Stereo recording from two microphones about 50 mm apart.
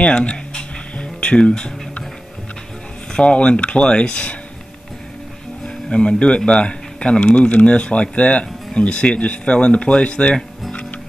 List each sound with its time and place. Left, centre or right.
0.0 s music: left
3.1 s speech: left
5.9 s speech: left
10.7 s music: left